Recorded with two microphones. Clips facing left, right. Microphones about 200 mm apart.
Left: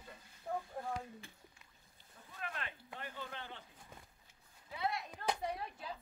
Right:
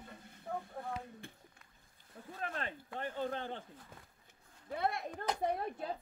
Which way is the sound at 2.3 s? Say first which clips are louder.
Right 5 dB; 40° right (ahead or behind).